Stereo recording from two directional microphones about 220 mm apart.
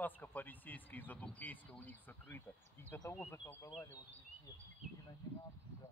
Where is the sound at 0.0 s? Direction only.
10° left (ahead or behind).